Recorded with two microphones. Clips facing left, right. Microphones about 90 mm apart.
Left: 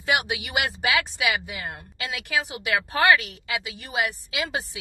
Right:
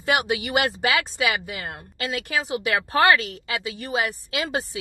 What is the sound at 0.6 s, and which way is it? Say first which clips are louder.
A woman's voice: right 1 dB; 40° right (ahead or behind).